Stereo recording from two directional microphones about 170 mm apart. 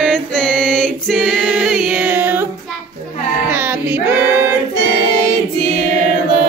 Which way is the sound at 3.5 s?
10° right (ahead or behind).